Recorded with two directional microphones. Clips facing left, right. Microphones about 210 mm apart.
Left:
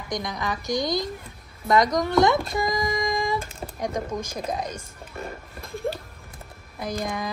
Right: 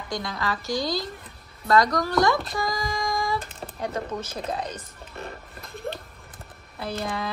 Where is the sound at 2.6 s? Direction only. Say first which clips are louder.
Left 3 dB; 20° left (ahead or behind).